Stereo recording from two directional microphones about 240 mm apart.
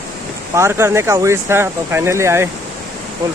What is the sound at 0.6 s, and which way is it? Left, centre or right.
Speech, centre.